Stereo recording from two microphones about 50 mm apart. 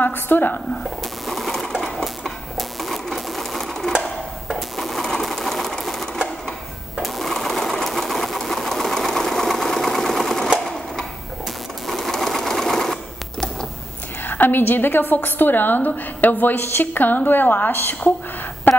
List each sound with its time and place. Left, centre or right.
0.0 s a woman's voice: left
1.2 s bird: centre
2.5 s typewriter: centre
4.6 s bird: centre
11.9 s sewing machine: centre
14.2 s a woman's voice: left
18.7 s a sound: left